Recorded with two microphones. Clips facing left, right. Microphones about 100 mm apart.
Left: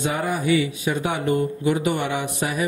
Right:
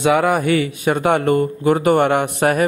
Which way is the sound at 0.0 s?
75° right (ahead or behind).